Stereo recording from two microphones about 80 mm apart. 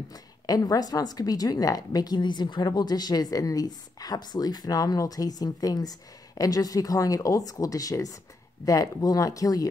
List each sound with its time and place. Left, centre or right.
0.1 s a woman's voice: left